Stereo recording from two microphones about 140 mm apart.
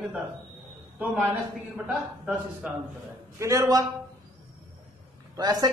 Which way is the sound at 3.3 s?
20° right (ahead or behind).